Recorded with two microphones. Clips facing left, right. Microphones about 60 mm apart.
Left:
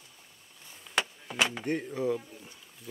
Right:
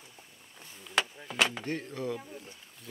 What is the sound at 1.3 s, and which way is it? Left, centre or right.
Speech, centre.